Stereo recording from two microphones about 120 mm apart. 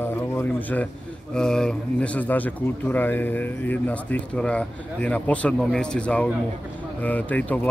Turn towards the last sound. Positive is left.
turn(degrees=15)  # may be behind; listen again after turning